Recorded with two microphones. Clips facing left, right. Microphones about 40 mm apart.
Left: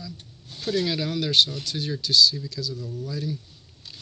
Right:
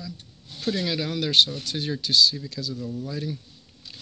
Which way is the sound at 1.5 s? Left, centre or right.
Right.